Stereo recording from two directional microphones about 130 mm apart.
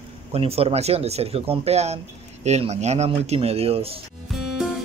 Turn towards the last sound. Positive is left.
turn(degrees=0)  # may be behind; listen again after turning